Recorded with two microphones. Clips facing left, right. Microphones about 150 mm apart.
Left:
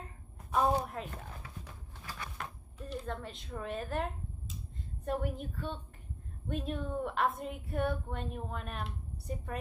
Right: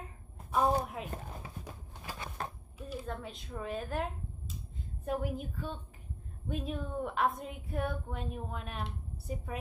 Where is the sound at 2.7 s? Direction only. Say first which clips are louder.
Left 1 dB; 5° right (ahead or behind).